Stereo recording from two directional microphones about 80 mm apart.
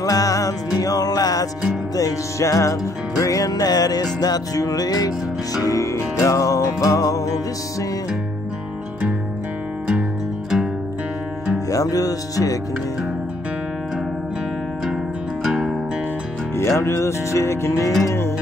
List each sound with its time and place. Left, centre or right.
0.0 s music: left
11.7 s music: left
15.4 s music: centre
16.5 s music: left